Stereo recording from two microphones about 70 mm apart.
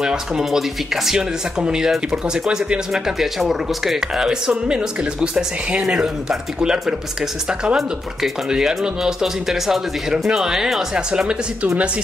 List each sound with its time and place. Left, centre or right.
0.0 s speech: centre